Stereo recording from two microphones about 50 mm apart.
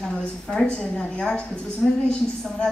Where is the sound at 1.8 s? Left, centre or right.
Centre.